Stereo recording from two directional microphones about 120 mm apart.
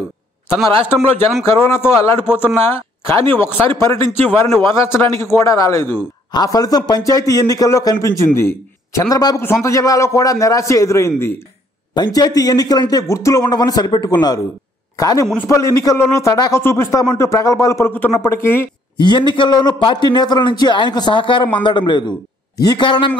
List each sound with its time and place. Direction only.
1.5 s speech: 20° left (ahead or behind)
11.9 s a man's voice: 35° left (ahead or behind)
18.9 s a man's voice: 40° left (ahead or behind)
22.8 s a man's voice: 45° left (ahead or behind)